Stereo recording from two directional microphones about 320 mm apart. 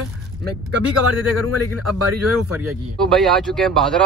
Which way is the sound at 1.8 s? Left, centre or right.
Right.